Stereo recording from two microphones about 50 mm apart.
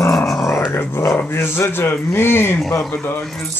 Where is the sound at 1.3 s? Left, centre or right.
Left.